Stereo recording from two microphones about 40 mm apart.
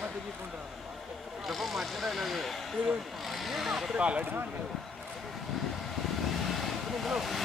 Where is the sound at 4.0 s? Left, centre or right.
Right.